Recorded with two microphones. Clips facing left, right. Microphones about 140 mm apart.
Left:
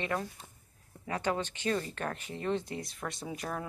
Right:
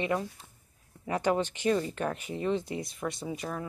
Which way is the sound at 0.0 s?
20° right (ahead or behind).